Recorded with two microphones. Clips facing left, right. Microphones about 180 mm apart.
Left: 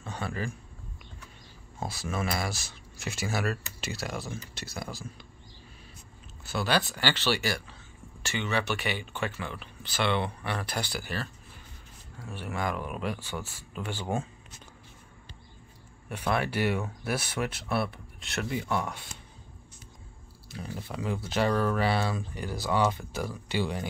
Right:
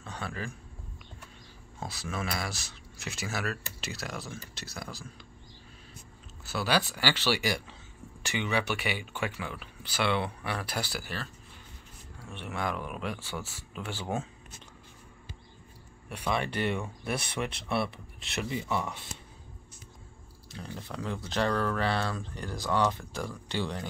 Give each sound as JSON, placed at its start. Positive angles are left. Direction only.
{"t": 0.0, "sound": "speech", "side_deg": 0}
{"t": 1.8, "sound": "speech", "side_deg": 0}
{"t": 6.4, "sound": "speech", "side_deg": -5}
{"t": 16.1, "sound": "speech", "side_deg": 5}
{"t": 20.5, "sound": "speech", "side_deg": 5}